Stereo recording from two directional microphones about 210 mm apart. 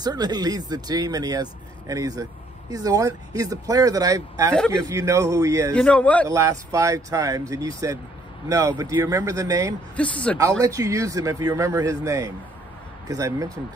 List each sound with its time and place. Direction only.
0.0 s speech: 20° right (ahead or behind)
5.7 s a man's voice: 5° left (ahead or behind)
6.2 s speech: 15° right (ahead or behind)
9.9 s a man's voice: 5° left (ahead or behind)
10.6 s speech: 15° right (ahead or behind)